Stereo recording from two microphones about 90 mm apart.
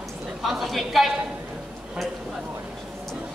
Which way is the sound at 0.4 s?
Centre (ahead or behind).